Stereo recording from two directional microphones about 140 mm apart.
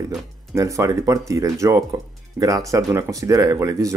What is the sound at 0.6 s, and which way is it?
Speech, 25° right (ahead or behind).